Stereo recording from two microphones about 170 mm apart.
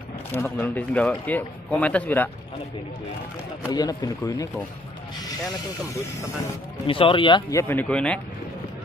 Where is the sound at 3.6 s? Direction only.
20° left (ahead or behind).